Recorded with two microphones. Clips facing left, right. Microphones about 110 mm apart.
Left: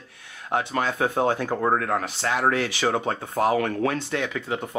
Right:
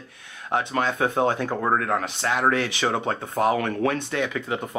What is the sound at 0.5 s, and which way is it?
Speech, 20° right (ahead or behind).